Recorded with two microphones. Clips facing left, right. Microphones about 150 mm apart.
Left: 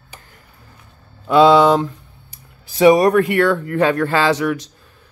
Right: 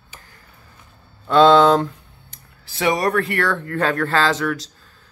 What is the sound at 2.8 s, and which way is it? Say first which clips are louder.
Speech: left 8 dB; 20° left (ahead or behind).